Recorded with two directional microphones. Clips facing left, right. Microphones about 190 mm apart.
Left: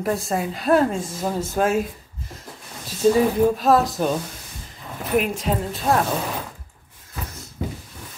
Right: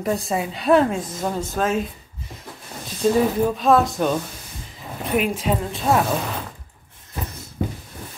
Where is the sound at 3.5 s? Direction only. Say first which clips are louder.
Right 1 dB; centre (ahead or behind).